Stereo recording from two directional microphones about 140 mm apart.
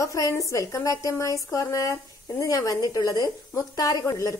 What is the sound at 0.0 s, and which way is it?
A woman's voice, 25° left (ahead or behind).